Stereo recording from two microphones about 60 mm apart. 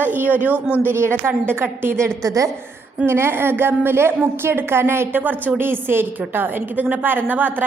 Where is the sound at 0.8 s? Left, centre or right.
Right.